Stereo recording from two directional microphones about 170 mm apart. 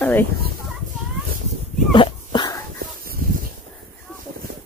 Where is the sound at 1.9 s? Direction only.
30° left (ahead or behind).